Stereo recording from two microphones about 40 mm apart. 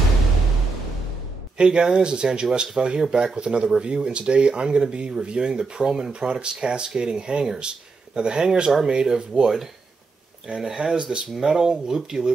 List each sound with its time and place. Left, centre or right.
1.6 s speech: right